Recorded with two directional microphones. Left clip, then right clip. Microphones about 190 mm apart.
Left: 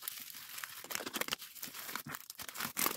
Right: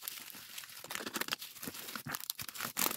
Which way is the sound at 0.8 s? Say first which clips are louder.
Right 1 dB; centre (ahead or behind).